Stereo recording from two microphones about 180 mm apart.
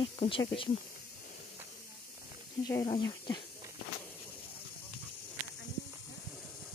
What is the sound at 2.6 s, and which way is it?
Speech, 20° left (ahead or behind).